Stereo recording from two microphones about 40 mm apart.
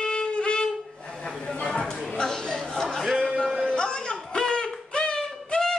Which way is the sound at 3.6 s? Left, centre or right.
Left.